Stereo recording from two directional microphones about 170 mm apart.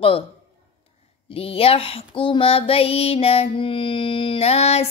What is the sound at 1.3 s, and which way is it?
Child singing, 35° left (ahead or behind).